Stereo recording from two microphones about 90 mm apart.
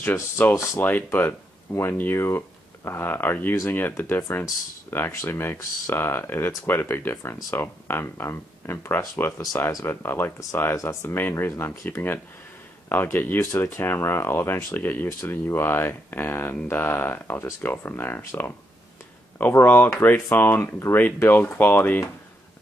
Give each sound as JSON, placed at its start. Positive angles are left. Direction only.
{"t": 0.1, "sound": "speech", "side_deg": 25}